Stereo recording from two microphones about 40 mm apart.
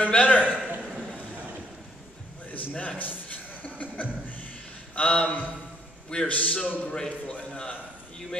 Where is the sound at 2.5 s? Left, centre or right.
Left.